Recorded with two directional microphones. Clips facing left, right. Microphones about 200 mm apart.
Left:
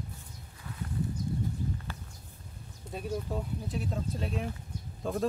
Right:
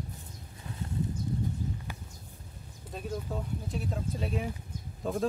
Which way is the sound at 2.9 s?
5° left (ahead or behind).